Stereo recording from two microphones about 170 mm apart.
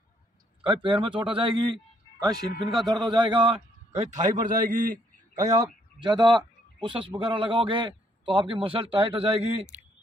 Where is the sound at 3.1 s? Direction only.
30° right (ahead or behind); by 5.6 s 45° right (ahead or behind).